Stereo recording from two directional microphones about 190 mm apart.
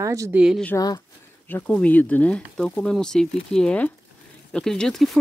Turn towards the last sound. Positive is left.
turn(degrees=0)  # may be behind; listen again after turning